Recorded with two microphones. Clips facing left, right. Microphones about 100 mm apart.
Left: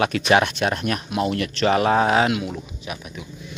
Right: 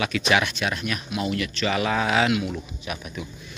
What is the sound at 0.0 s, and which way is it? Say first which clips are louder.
Speech: left 5 dB; 50° left (ahead or behind).